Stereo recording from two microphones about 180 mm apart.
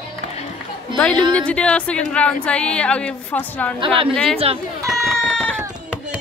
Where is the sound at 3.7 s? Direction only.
30° right (ahead or behind).